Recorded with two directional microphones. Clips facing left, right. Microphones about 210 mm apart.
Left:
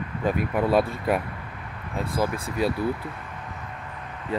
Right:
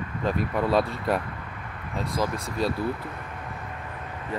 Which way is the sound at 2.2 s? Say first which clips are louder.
Left 2 dB; 5° left (ahead or behind).